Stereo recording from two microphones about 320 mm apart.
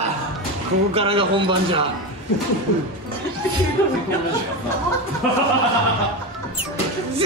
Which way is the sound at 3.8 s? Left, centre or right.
Centre.